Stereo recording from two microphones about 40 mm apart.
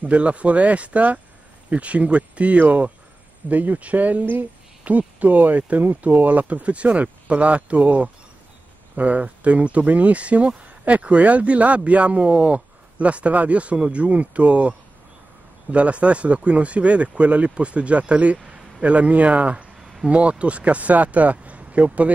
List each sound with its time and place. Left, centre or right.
0.0 s a man's voice: right
19.8 s a sound: centre
20.1 s speech: right